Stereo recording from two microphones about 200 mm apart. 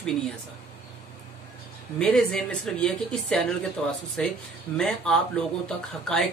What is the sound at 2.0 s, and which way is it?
Speech, 5° left (ahead or behind).